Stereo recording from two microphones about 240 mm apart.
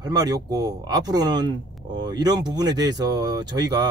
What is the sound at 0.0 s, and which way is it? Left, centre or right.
Speech, centre.